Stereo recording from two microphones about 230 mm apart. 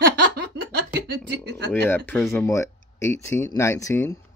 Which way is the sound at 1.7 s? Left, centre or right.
Centre.